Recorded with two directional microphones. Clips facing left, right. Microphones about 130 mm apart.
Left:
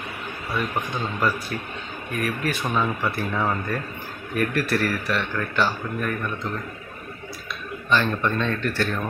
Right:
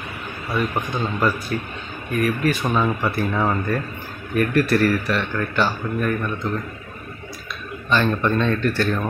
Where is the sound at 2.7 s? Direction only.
25° right (ahead or behind).